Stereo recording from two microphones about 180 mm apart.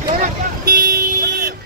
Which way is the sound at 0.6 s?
55° right (ahead or behind).